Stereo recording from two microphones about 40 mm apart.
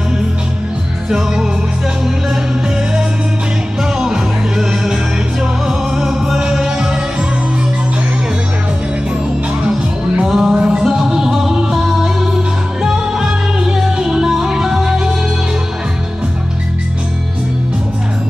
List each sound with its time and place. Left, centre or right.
1.1 s music: centre
4.0 s music: centre
6.6 s music: right
10.2 s music: centre